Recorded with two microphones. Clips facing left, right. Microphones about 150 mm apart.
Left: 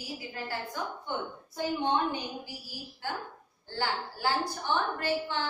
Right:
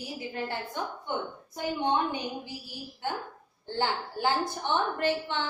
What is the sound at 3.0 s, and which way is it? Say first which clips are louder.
A woman's voice: right 3 dB; 20° right (ahead or behind).